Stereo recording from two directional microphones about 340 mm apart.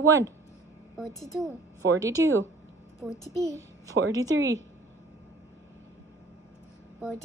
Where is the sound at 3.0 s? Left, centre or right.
Centre.